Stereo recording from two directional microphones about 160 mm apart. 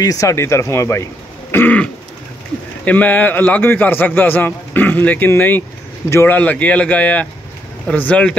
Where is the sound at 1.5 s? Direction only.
10° left (ahead or behind).